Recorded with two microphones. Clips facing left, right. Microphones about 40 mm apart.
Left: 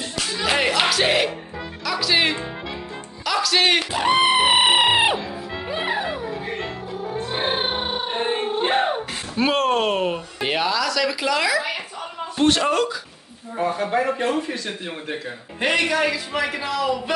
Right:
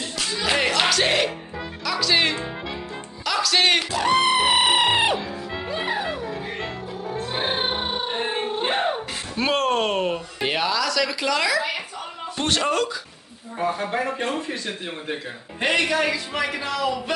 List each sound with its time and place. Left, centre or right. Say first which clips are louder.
0.3 s music: left 1 dB; centre
1.9 s speech: left 1 dB; centre
3.9 s music: left 2 dB; left; by 11.8 s centre
12.4 s a man's voice: left 4 dB; centre
15.6 s a man's voice: left 1 dB; centre